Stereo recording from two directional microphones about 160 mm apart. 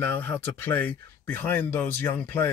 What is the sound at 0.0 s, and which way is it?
Speech, 15° left (ahead or behind).